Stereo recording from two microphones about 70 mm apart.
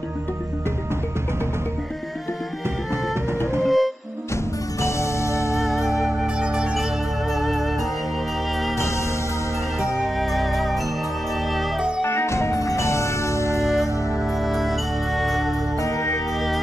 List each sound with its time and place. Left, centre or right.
3.6 s music: centre
4.8 s music: left
5.9 s music: centre
6.4 s music: centre
7.3 s music: centre
9.9 s music: centre
12.0 s music: left
14.4 s music: centre
15.8 s music: left